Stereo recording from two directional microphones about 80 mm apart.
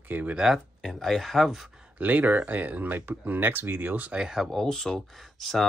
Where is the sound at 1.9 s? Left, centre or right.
Right.